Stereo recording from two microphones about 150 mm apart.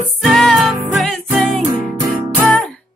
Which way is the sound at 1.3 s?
15° right (ahead or behind).